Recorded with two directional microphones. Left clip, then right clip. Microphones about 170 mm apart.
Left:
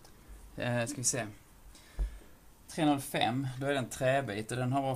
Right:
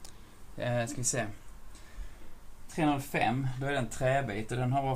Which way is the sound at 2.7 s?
45° left (ahead or behind).